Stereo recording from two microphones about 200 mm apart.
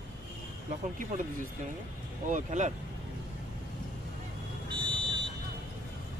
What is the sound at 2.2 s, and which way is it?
Speech, 40° right (ahead or behind).